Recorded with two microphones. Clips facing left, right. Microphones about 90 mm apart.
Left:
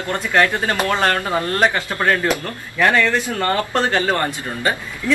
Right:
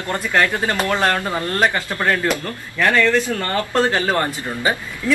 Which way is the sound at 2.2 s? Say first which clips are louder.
Left 1 dB; 15° left (ahead or behind).